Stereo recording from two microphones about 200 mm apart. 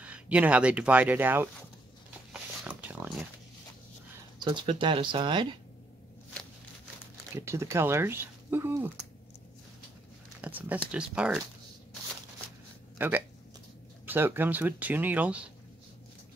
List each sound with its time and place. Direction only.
0.0 s speech: 5° right (ahead or behind)
2.6 s a sound: 10° right (ahead or behind)
4.5 s speech: 25° right (ahead or behind)
7.3 s speech: 15° right (ahead or behind)
10.4 s speech: 5° right (ahead or behind)
12.9 s a sound: 10° right (ahead or behind)
14.0 s speech: 10° right (ahead or behind)